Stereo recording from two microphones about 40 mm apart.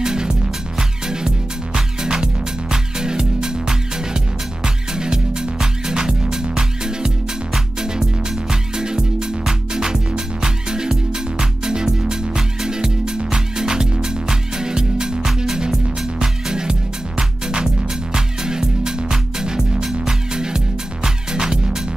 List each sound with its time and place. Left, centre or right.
0.0 s music: centre